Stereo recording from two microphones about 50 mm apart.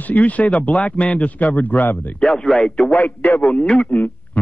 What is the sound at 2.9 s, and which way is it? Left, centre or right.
Speech, left.